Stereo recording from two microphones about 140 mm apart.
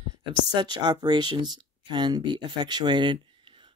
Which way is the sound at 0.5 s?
30° right (ahead or behind).